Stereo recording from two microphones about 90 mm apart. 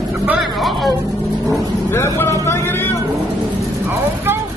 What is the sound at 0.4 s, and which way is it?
Music, centre (ahead or behind).